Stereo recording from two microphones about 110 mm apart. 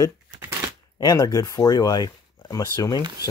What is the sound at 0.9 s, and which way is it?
Speech, 35° left (ahead or behind).